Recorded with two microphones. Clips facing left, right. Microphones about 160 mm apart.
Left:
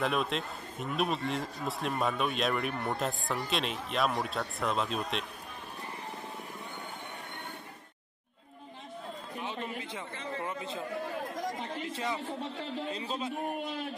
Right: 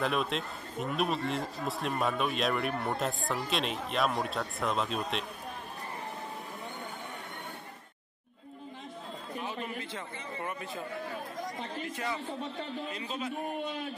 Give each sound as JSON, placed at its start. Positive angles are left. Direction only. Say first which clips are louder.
{"t": 0.0, "sound": "speech", "louder": "even", "side_deg": 0}
{"t": 9.4, "sound": "chatter", "louder": "even", "side_deg": 20}
{"t": 11.9, "sound": "a man's voice", "louder": "left 1 dB", "side_deg": 20}
{"t": 12.9, "sound": "a man's voice", "louder": "left 1 dB", "side_deg": 30}